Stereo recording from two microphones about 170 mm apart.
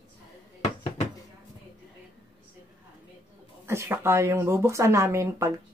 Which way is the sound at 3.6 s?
15° right (ahead or behind).